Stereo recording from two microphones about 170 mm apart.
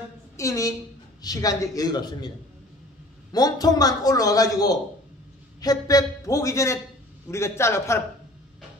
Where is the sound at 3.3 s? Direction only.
25° left (ahead or behind).